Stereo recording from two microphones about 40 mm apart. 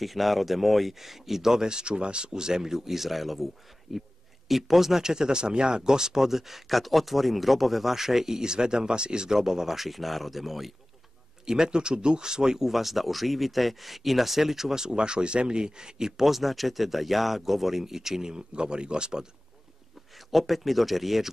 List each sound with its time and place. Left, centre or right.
0.0 s speech: centre
11.4 s speech: centre
12.6 s speech: centre
16.3 s speech: centre; by 19.2 s right
20.2 s speech: centre